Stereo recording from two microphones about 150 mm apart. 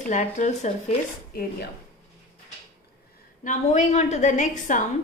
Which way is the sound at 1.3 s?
85° left.